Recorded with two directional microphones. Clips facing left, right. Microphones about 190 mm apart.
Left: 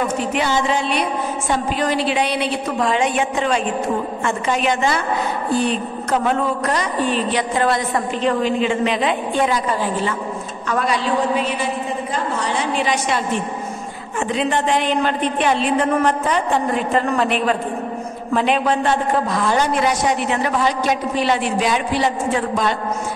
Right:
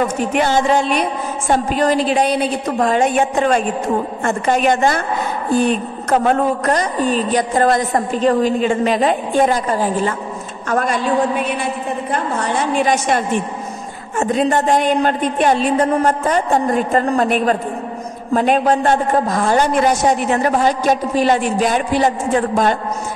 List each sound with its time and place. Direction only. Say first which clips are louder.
0.2 s a man's voice: right 4 dB; 50° right (ahead or behind)